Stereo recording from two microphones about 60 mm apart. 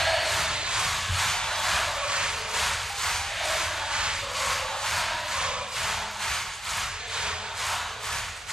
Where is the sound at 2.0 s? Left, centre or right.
Centre.